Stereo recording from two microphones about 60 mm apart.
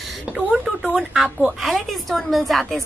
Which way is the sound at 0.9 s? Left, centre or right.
Centre.